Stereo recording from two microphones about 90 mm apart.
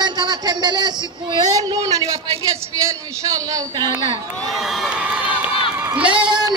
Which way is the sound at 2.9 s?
40° right (ahead or behind).